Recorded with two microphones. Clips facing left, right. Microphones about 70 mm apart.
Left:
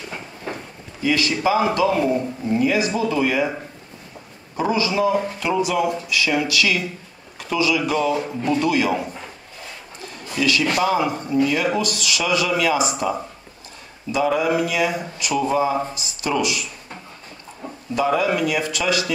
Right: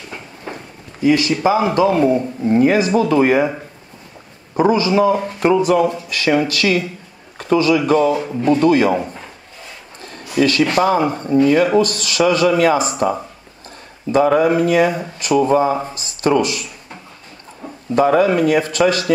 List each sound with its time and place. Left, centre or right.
1.4 s a man's voice: right
4.6 s a man's voice: right
8.2 s speech: centre
8.5 s speech: right
10.4 s speech: right
14.1 s speech: right
17.9 s speech: right